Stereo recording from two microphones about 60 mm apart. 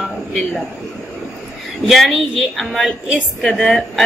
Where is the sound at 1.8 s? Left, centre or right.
Centre.